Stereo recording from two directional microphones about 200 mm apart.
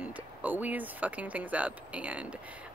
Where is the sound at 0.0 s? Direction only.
5° right (ahead or behind).